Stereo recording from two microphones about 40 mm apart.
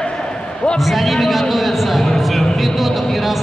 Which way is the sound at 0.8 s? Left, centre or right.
Centre.